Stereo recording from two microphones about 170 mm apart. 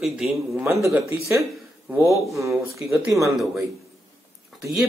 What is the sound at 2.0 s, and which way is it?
Cough, 20° right (ahead or behind).